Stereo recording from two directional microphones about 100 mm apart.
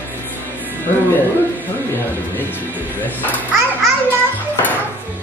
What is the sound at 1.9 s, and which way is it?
Speech, 20° left (ahead or behind).